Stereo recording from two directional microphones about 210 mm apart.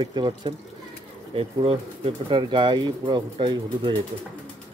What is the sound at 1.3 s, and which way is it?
Speech, 25° right (ahead or behind).